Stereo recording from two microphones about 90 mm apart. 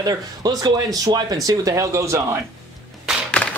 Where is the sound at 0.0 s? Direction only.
45° right (ahead or behind).